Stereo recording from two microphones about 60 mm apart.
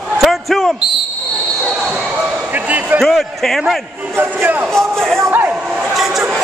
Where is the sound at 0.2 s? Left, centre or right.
Centre.